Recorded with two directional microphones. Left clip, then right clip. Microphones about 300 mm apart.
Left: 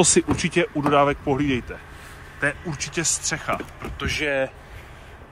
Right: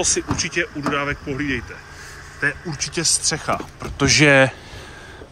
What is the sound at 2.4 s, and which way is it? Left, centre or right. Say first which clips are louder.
Speech: right 2 dB; centre.